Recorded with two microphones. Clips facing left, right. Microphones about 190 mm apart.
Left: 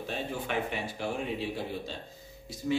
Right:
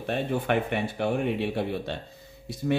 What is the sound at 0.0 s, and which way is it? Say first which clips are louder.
A man's voice: right 7 dB; 60° right (ahead or behind).